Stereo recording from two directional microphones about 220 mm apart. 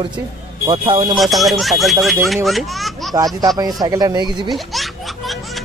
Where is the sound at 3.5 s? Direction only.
15° right (ahead or behind).